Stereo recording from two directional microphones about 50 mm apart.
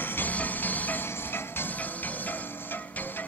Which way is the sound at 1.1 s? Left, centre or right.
Left.